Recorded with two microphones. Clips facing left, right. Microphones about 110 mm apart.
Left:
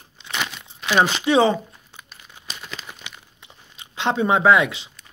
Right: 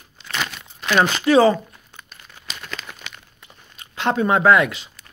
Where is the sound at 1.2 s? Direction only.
25° left (ahead or behind).